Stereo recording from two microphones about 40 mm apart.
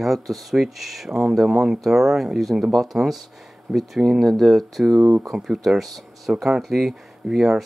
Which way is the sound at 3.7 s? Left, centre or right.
Centre.